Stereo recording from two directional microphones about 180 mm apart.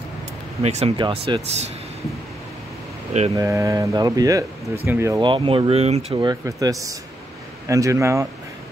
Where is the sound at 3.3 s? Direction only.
15° right (ahead or behind).